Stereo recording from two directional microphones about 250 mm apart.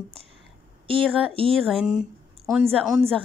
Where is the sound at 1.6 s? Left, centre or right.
Centre.